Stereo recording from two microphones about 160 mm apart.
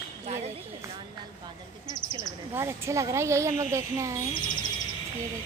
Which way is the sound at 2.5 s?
15° right (ahead or behind).